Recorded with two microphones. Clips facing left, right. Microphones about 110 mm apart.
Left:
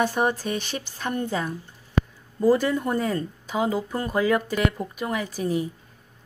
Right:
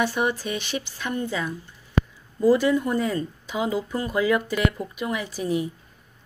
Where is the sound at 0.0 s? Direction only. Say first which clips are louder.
Left 1 dB; 45° left (ahead or behind).